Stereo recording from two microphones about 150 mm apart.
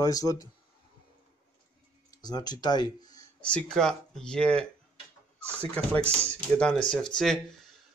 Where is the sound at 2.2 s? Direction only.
25° left (ahead or behind).